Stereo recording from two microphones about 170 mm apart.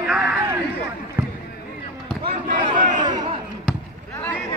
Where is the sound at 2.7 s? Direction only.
50° right (ahead or behind).